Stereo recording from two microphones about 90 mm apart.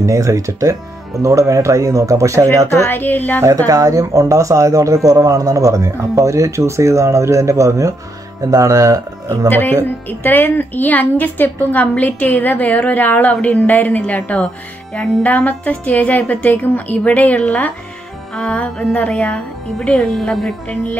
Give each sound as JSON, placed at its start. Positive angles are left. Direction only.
{"t": 0.0, "sound": "speech", "side_deg": -35}
{"t": 2.7, "sound": "a woman's voice", "side_deg": 25}
{"t": 3.4, "sound": "speech", "side_deg": -40}
{"t": 9.5, "sound": "a woman's voice", "side_deg": 25}